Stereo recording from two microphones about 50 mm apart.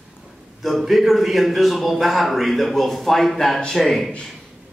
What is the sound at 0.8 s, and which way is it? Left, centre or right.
A man's voice, centre.